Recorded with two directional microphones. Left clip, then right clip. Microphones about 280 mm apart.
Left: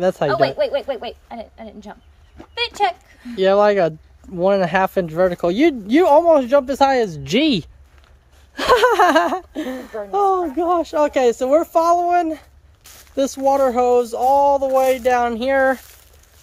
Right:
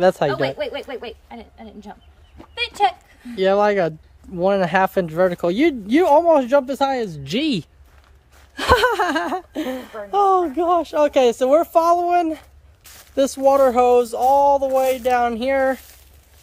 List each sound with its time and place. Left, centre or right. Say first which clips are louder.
0.0 s speech: right 2 dB; centre
0.3 s speech: left 5 dB; left
1.4 s speech: left 5 dB; centre